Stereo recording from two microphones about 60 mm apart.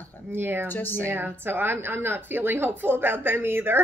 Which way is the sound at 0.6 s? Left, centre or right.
Left.